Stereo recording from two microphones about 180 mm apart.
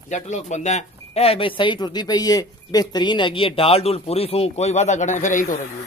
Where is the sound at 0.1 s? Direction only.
40° left (ahead or behind).